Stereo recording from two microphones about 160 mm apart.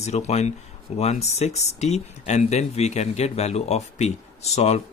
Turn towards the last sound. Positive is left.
turn(degrees=45)  # may be behind; listen again after turning